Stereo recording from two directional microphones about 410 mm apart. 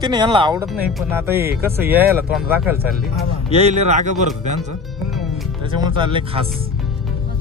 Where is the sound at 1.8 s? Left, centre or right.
Right.